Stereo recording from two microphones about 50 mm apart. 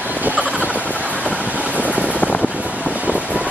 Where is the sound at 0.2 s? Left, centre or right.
Right.